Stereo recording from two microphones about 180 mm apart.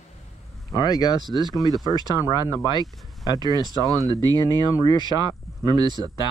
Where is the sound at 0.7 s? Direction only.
20° left (ahead or behind).